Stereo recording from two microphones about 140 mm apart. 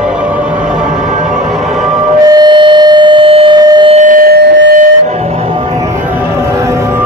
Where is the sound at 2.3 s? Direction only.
30° right (ahead or behind).